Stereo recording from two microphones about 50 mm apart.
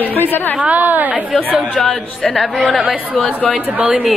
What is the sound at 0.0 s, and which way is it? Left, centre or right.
Speech, left.